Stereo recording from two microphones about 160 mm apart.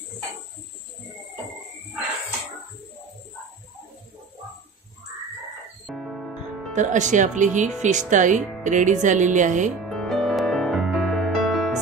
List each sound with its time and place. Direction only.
5.9 s music: centre (ahead or behind)
6.7 s speech: 50° right (ahead or behind)
9.8 s music: centre (ahead or behind)